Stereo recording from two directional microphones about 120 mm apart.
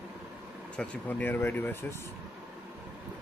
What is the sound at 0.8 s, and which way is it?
Speech, 15° left (ahead or behind).